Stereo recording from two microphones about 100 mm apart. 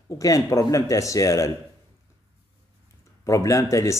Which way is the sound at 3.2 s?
30° left (ahead or behind).